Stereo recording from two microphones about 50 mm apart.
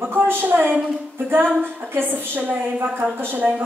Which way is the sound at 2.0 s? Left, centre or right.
Right.